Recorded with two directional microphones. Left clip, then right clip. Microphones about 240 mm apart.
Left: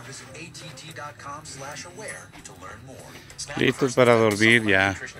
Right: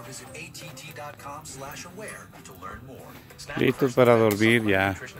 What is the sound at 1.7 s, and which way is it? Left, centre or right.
Speech, right.